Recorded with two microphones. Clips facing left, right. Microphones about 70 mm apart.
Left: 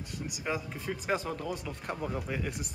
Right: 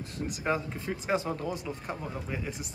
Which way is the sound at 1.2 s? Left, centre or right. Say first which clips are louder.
Right 3 dB; right.